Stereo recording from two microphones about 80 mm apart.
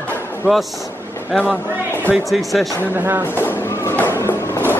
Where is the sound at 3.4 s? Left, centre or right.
Left.